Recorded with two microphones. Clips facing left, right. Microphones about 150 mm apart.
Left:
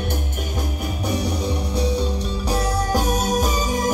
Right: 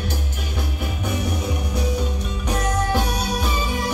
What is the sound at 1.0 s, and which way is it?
Music, 35° left (ahead or behind).